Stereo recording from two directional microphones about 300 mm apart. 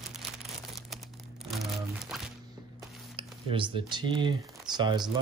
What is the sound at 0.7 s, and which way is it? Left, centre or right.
Crumpling, centre.